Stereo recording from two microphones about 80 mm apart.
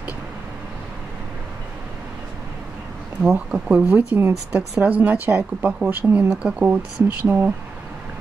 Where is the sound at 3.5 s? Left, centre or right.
Centre.